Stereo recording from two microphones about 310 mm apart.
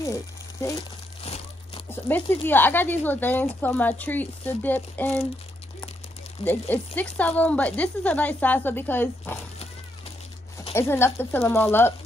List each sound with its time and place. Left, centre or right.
0.0 s crumpling: centre
1.9 s speech: centre
6.4 s speech: centre
10.6 s speech: centre